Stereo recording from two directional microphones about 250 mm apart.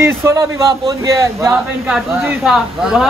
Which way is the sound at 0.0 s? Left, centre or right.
Centre.